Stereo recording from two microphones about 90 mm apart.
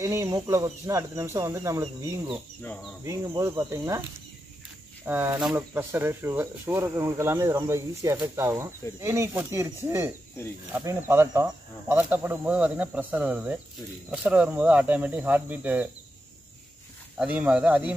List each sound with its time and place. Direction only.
0.0 s speech: 35° right (ahead or behind)
5.0 s speech: 25° right (ahead or behind)
17.3 s speech: 15° right (ahead or behind)